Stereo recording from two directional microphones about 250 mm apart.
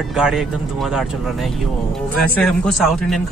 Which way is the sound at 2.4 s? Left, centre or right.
Centre.